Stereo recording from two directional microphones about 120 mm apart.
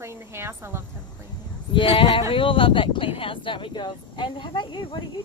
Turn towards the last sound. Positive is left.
turn(degrees=40)  # may be behind; listen again after turning